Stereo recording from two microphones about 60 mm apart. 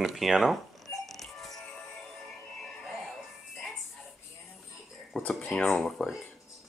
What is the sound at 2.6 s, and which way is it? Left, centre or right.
Music, centre.